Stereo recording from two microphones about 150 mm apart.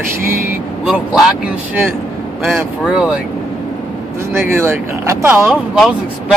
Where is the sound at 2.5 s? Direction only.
5° right (ahead or behind).